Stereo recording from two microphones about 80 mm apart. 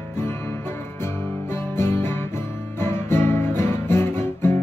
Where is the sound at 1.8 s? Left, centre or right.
Left.